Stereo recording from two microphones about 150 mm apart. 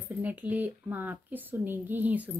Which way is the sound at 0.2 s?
10° right (ahead or behind).